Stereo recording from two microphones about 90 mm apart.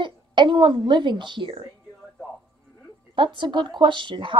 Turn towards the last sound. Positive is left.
turn(degrees=-60)  # may be behind; listen again after turning